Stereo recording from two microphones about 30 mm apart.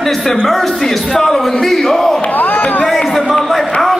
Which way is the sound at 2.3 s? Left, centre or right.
Left.